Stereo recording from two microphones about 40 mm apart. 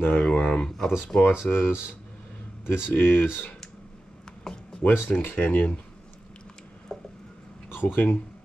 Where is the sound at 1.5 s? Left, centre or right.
Left.